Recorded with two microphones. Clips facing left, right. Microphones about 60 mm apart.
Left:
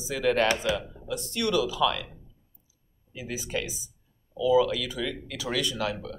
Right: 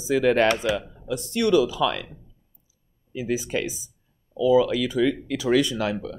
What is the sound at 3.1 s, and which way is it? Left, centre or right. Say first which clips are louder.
Speech: right 7 dB; right.